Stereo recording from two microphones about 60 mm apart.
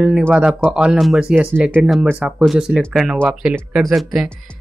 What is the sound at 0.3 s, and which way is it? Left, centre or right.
Speech, centre.